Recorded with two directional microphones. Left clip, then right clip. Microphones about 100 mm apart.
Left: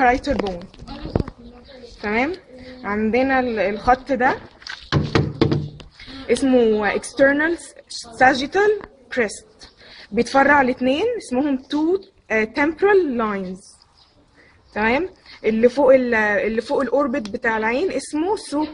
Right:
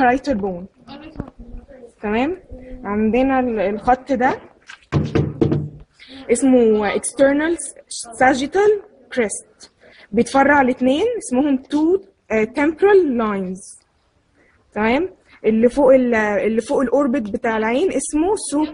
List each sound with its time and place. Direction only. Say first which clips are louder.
0.0 s speech: right 1 dB; 15° right (ahead or behind)
2.0 s a woman's voice: right 1 dB; 5° right (ahead or behind)
4.8 s a sound: even; 25° left (ahead or behind)
6.3 s a woman's voice: right 2 dB; centre (ahead or behind)
10.1 s a woman's voice: right 1 dB; 5° right (ahead or behind)
11.2 s a woman's voice: right 3 dB; 10° left (ahead or behind)
14.7 s speech: right 1 dB; 5° right (ahead or behind)